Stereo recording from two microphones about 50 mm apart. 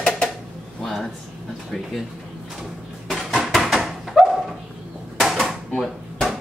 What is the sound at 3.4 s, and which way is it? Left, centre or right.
Dog, centre.